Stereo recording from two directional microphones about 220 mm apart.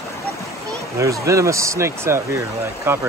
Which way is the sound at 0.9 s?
15° right (ahead or behind).